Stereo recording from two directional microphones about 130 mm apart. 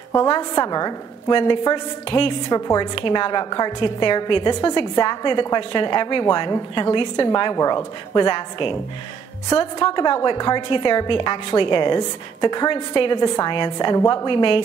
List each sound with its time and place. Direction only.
0.3 s a woman's voice: 30° left (ahead or behind)
2.5 s a woman's voice: 30° left (ahead or behind)